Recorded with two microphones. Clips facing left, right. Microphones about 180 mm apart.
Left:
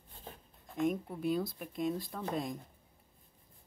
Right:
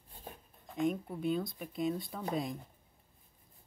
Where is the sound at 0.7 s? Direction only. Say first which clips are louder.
Even; centre (ahead or behind).